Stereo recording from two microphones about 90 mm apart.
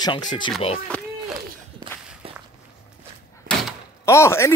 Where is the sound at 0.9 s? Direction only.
15° left (ahead or behind).